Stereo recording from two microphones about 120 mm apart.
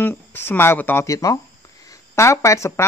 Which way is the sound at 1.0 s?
30° left (ahead or behind).